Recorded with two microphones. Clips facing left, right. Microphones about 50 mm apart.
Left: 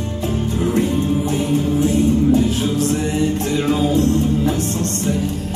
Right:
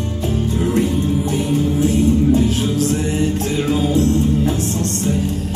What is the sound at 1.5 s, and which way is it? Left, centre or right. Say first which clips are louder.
Music: right 1 dB; left.